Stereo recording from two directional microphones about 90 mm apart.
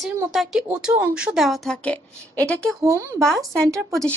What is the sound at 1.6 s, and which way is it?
Speech, 15° left (ahead or behind).